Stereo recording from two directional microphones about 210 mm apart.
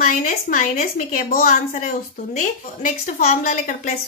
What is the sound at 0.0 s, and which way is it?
A woman's voice, 40° left (ahead or behind).